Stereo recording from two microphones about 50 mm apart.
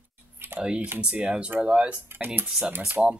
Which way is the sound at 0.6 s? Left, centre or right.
Right.